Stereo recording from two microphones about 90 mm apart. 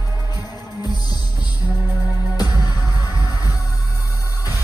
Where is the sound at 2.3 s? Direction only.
50° left (ahead or behind).